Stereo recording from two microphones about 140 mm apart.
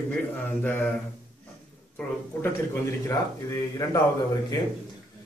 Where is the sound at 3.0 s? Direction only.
25° left (ahead or behind).